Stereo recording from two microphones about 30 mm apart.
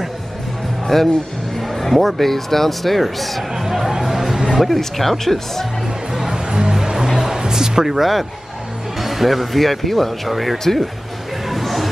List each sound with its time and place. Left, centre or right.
0.8 s speech: centre
3.5 s a sound: centre
4.0 s vehicle: centre
4.5 s speech: centre
4.7 s speech: centre
6.1 s music: centre
7.3 s a sound: right
7.9 s speech: centre
10.6 s speech: centre
11.4 s music: centre